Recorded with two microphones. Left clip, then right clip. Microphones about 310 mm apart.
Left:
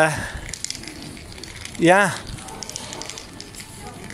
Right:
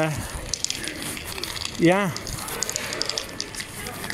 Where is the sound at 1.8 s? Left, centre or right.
Left.